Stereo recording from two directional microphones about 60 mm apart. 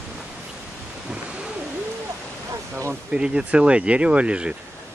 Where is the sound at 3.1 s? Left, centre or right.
Centre.